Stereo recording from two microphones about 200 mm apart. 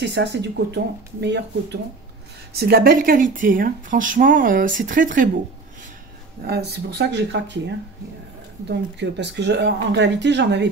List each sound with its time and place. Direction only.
0.0 s speech: 60° right (ahead or behind)
2.6 s speech: 50° right (ahead or behind)
6.4 s speech: 55° right (ahead or behind)
8.6 s speech: 60° right (ahead or behind)